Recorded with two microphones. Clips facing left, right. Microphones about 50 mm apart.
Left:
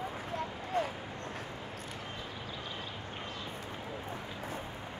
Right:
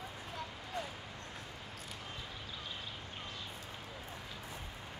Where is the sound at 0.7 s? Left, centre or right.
Left.